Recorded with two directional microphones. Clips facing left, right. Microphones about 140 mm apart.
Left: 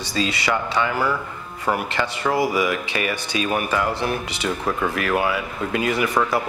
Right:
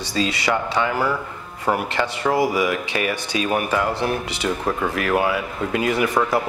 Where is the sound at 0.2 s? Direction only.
40° right (ahead or behind).